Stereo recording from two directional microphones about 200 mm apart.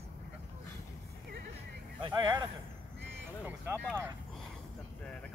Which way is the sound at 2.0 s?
25° right (ahead or behind).